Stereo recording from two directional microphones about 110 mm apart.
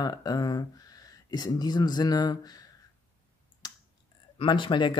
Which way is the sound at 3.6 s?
40° left (ahead or behind).